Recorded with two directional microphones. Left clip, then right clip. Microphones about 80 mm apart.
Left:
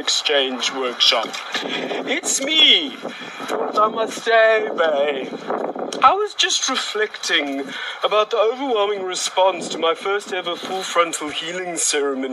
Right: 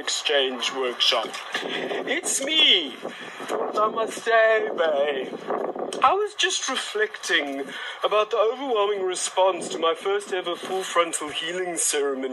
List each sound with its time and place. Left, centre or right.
0.0 s speech: left